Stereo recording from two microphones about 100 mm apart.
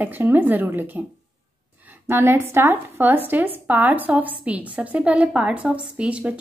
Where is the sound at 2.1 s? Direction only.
25° right (ahead or behind).